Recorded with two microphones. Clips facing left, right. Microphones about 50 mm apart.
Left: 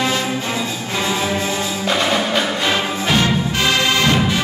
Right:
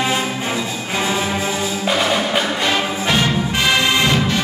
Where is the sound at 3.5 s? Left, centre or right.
Centre.